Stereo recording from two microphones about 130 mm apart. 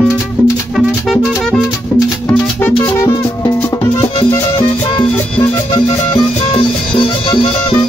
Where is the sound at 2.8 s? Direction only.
20° left (ahead or behind).